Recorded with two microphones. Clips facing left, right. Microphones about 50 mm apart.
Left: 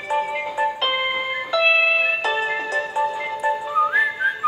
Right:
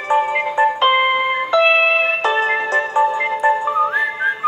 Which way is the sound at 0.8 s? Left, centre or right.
Right.